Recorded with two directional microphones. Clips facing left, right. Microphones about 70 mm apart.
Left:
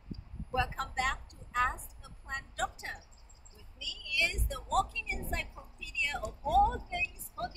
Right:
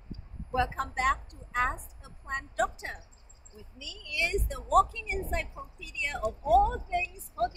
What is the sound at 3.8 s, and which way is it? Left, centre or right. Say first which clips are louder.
A woman's voice: right 1 dB; right.